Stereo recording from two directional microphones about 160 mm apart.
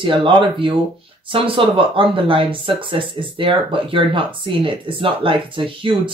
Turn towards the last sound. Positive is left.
turn(degrees=-30)  # may be behind; listen again after turning